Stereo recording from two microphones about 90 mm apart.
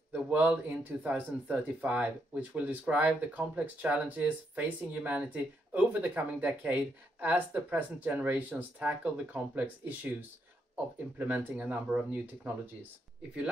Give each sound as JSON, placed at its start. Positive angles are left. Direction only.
{"t": 0.1, "sound": "speech", "side_deg": -15}
{"t": 11.1, "sound": "speech", "side_deg": -20}